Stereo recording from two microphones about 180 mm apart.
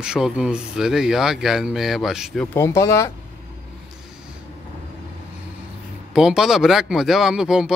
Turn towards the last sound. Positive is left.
turn(degrees=-5)  # may be behind; listen again after turning